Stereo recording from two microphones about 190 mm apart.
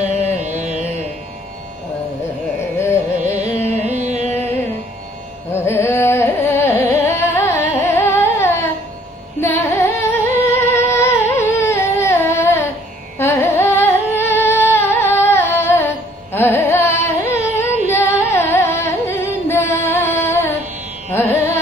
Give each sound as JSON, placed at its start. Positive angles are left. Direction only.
{"t": 2.8, "sound": "carnatic music", "side_deg": 15}
{"t": 3.8, "sound": "music", "side_deg": -35}
{"t": 4.3, "sound": "music", "side_deg": 10}
{"t": 5.5, "sound": "carnatic music", "side_deg": 15}
{"t": 10.7, "sound": "a sound", "side_deg": 10}
{"t": 13.2, "sound": "carnatic music", "side_deg": 15}
{"t": 21.1, "sound": "music", "side_deg": 10}